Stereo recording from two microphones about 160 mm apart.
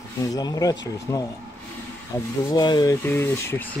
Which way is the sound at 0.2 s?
25° left (ahead or behind).